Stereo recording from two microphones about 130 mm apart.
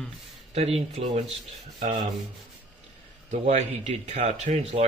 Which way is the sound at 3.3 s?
60° right (ahead or behind).